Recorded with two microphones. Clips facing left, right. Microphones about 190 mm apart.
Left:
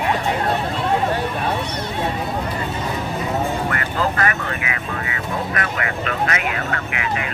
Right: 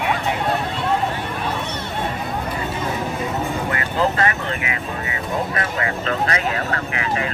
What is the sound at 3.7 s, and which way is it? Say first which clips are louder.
Vehicle: right 1 dB; 25° right (ahead or behind).